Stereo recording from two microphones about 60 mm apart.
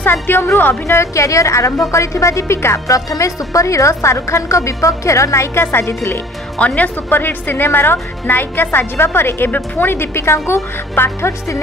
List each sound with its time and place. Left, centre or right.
0.0 s a woman's voice: left
0.9 s a woman's voice: left
2.9 s a woman's voice: left
6.6 s speech: left
7.1 s a woman's voice: left